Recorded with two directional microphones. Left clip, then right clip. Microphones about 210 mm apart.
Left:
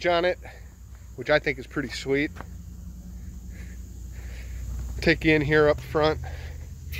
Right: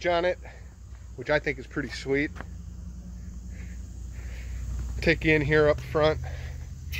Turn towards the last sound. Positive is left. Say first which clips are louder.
# even
turn(degrees=15)  # may be behind; listen again after turning